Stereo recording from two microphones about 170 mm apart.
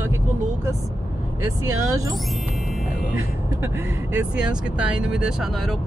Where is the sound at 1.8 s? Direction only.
20° right (ahead or behind).